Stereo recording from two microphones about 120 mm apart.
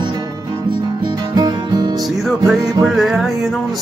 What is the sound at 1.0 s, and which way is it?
Music, 35° right (ahead or behind).